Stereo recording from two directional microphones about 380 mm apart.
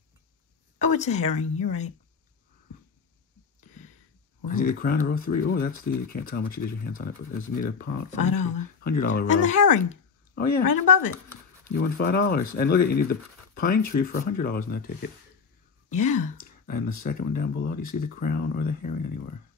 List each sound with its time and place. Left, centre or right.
0.7 s speech: centre
3.6 s a sound: centre
4.5 s speech: left